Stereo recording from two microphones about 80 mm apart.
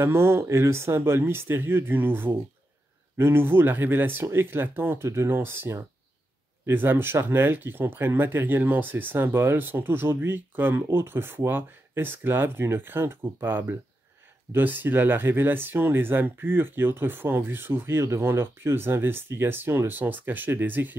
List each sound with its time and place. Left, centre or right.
0.0 s speech: right